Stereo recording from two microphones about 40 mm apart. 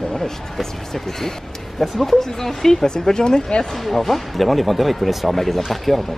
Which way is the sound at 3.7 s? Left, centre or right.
Centre.